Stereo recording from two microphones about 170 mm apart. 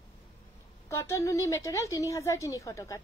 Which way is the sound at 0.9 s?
20° left (ahead or behind).